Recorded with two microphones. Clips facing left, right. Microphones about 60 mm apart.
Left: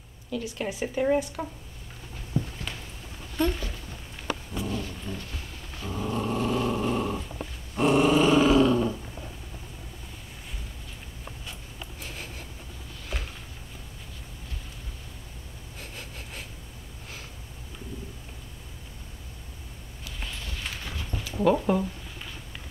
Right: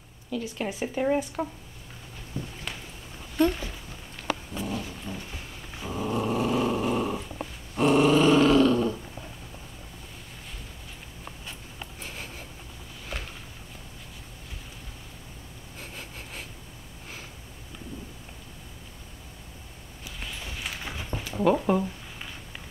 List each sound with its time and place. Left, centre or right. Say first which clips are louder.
0.3 s speech: even; centre
0.7 s speech: even; centre
0.9 s speech: left 1 dB; centre
3.3 s speech: right 3 dB; centre
4.6 s dog: even; centre
7.7 s growling: right 1 dB; centre
12.0 s a sound: even; centre
15.8 s a sound: right 1 dB; centre
20.4 s a sound: right 3 dB; centre
21.2 s zipper: even; centre